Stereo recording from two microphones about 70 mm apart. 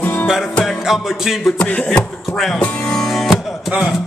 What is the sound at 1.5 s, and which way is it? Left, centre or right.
Beatboxing, left.